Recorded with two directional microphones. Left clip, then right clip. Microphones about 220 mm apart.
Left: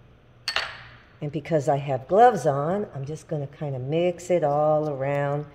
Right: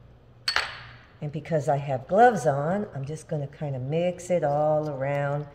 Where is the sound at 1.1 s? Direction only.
45° left (ahead or behind).